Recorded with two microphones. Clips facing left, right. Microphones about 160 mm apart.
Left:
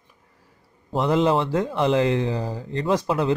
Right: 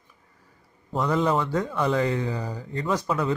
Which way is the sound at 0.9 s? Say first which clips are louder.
Left 3 dB; 25° left (ahead or behind).